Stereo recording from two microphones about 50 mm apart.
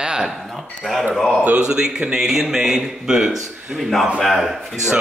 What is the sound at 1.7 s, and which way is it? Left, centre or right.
Speech, centre.